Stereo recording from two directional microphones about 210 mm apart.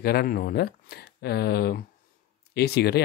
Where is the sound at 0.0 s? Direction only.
45° left (ahead or behind).